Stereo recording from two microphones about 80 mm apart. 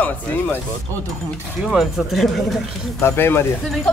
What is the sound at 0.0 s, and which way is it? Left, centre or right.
Speech, centre.